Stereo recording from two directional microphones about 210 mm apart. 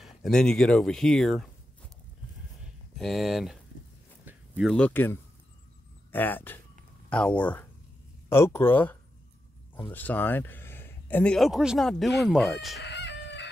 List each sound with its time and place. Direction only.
0.0 s speech: centre (ahead or behind)
3.0 s speech: centre (ahead or behind)
9.9 s speech: 10° left (ahead or behind)
12.8 s chicken: 55° left (ahead or behind)